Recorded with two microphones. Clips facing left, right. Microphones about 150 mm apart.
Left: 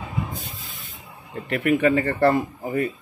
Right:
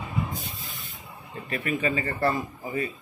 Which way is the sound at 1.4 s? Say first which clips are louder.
Left 8 dB; 65° left (ahead or behind).